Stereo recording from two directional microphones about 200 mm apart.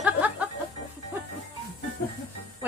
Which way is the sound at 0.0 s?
5° right (ahead or behind).